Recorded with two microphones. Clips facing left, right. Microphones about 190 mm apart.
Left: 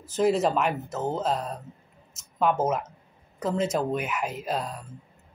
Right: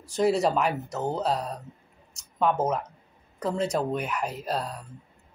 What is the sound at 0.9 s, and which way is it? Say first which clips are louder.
Speech: even; centre (ahead or behind).